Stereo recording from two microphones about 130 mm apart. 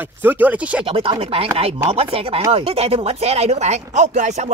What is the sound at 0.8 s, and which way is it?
Speech, 45° right (ahead or behind).